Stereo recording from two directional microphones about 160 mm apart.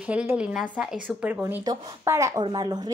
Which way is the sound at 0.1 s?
10° right (ahead or behind).